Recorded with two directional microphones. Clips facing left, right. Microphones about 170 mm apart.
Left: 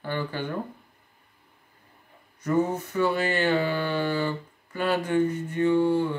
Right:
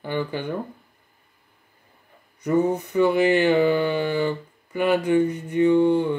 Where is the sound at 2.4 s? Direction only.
15° right (ahead or behind).